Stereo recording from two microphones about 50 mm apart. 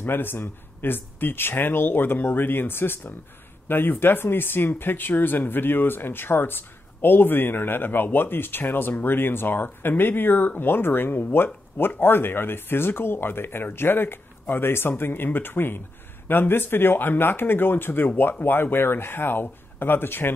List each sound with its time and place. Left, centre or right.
0.0 s speech: left